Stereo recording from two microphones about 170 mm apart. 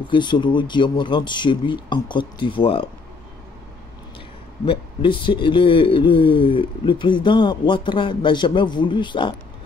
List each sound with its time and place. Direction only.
0.1 s speech: 25° left (ahead or behind)
4.6 s speech: 30° left (ahead or behind)